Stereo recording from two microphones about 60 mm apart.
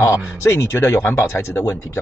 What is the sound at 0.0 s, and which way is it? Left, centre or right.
Speech, left.